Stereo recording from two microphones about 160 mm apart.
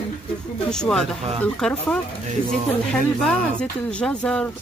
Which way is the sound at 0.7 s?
5° left (ahead or behind).